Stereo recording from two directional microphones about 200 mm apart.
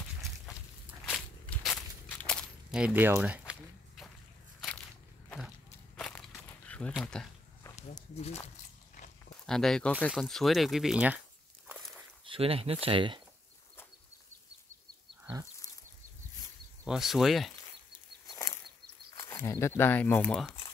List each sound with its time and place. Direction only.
0.8 s walk: centre (ahead or behind)
4.6 s a sound: 5° left (ahead or behind)
5.9 s a sound: centre (ahead or behind)
6.9 s speech: 5° left (ahead or behind)
7.9 s speech: 30° left (ahead or behind)
9.5 s speech: centre (ahead or behind)
11.6 s walk: centre (ahead or behind)
12.3 s speech: 30° right (ahead or behind)
16.8 s speech: centre (ahead or behind)
18.3 s a sound: 15° left (ahead or behind)
19.8 s speech: 10° left (ahead or behind)